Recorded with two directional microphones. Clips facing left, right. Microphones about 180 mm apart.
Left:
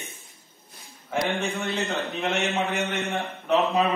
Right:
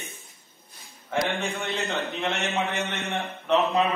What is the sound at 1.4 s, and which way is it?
A man's voice, centre (ahead or behind).